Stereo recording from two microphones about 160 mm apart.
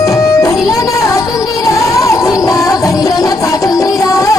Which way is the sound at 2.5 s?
20° left (ahead or behind).